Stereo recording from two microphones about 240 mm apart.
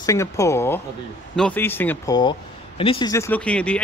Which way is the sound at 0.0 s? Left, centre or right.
Centre.